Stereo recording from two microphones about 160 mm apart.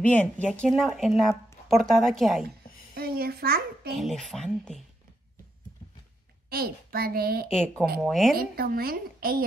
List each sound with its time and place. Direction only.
0.0 s a woman's voice: 10° left (ahead or behind)
2.9 s a child's voice: 70° right (ahead or behind)
3.9 s a woman's voice: centre (ahead or behind)
6.5 s a child's voice: 70° right (ahead or behind)
8.0 s a woman's voice: centre (ahead or behind)
8.5 s a child's voice: 70° right (ahead or behind)